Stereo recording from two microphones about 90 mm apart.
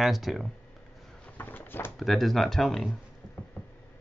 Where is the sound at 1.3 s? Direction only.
20° left (ahead or behind).